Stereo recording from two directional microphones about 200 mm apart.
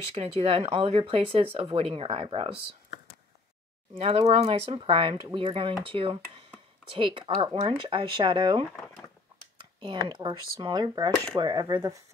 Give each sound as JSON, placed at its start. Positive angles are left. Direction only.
{"t": 0.1, "sound": "speech", "side_deg": -30}
{"t": 3.9, "sound": "speech", "side_deg": -30}